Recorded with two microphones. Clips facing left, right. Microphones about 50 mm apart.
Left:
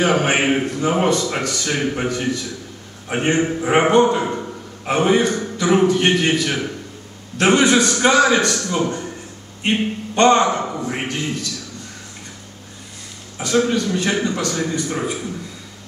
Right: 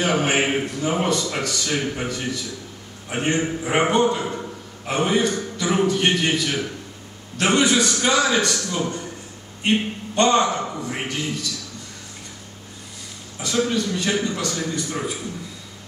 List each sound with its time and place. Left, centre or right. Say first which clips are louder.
0.0 s a man's voice: left 3 dB; centre
8.6 s a man's voice: left 4 dB; centre
13.5 s a man's voice: left 4 dB; centre